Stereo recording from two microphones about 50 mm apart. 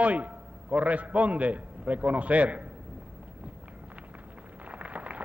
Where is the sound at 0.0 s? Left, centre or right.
Right.